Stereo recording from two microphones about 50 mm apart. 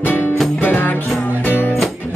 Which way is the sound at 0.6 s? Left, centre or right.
Left.